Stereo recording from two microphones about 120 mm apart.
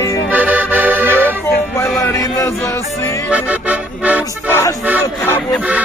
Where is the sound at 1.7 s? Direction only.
25° left (ahead or behind).